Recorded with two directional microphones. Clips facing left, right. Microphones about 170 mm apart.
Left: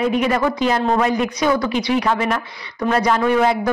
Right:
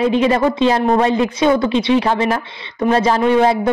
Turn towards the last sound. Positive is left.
turn(degrees=-25)  # may be behind; listen again after turning